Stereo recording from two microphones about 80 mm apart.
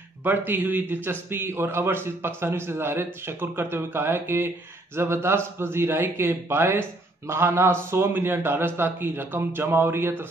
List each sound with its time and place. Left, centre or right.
0.2 s a man's voice: right